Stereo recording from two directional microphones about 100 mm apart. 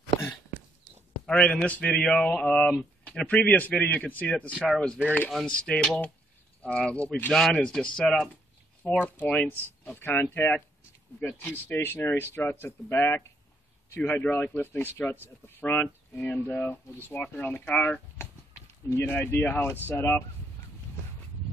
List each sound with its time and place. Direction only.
1.2 s speech: 10° left (ahead or behind)
8.8 s speech: 15° left (ahead or behind)